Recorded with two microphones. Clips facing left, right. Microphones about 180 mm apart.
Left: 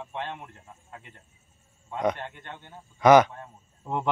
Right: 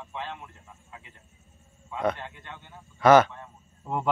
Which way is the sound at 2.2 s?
50° left (ahead or behind).